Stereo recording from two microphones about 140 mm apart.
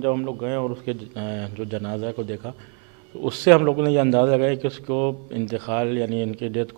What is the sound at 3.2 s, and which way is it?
Speech, 15° right (ahead or behind).